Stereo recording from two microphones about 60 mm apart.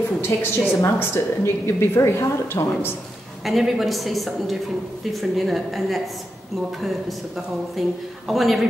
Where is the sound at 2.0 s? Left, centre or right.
Left.